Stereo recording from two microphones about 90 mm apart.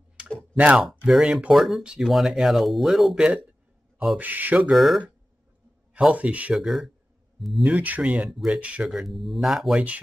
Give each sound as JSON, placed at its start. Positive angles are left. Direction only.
{"t": 0.2, "sound": "a sound", "side_deg": -10}
{"t": 0.6, "sound": "speech", "side_deg": -15}
{"t": 0.8, "sound": "speech", "side_deg": 0}
{"t": 1.2, "sound": "speech", "side_deg": -15}
{"t": 1.5, "sound": "speech", "side_deg": 0}
{"t": 4.2, "sound": "mantra", "side_deg": -20}
{"t": 4.6, "sound": "speech", "side_deg": -5}
{"t": 5.9, "sound": "speech", "side_deg": -10}
{"t": 6.5, "sound": "speech", "side_deg": 0}
{"t": 7.6, "sound": "speech", "side_deg": -15}